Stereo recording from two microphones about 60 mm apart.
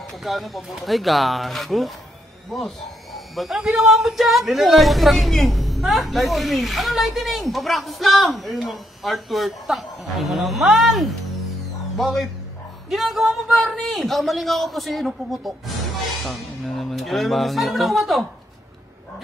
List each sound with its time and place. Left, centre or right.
0.2 s speech: centre